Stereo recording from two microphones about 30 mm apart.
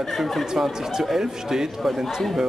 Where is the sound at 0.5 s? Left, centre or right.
Centre.